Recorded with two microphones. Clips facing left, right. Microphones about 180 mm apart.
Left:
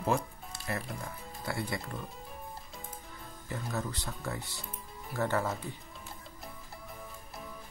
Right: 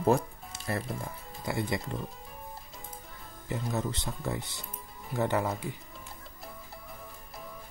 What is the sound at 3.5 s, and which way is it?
Speech, 20° right (ahead or behind).